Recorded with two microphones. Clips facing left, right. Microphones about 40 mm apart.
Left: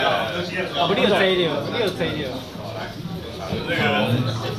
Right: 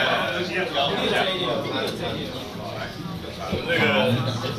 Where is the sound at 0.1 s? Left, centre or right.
Right.